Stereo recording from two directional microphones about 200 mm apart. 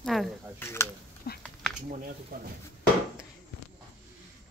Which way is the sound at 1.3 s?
50° left (ahead or behind).